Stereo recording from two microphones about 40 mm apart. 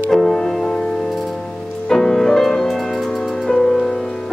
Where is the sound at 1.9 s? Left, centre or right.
Centre.